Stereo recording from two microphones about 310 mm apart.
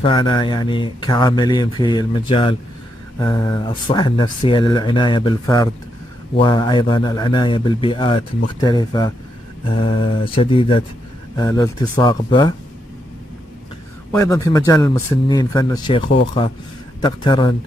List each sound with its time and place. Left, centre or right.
0.0 s speech: centre
14.1 s speech: centre